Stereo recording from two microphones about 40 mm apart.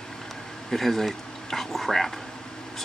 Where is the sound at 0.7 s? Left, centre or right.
Centre.